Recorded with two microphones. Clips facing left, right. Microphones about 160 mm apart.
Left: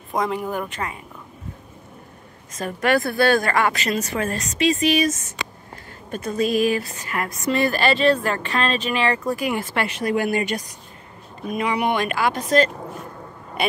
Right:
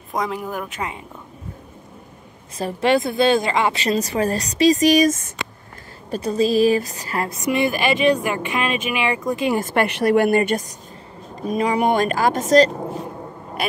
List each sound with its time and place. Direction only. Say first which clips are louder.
0.1 s speech: left 1 dB; centre (ahead or behind)
2.5 s a woman's voice: right 2 dB; 30° right (ahead or behind)
3.7 s speech: right 3 dB; 30° right (ahead or behind); by 5.3 s 50° right (ahead or behind)
6.0 s a woman's voice: right 3 dB; 35° right (ahead or behind)
7.5 s speech: even; 15° right (ahead or behind)
9.6 s speech: right 5 dB; 50° right (ahead or behind)
11.4 s speech: right 3 dB; 40° right (ahead or behind)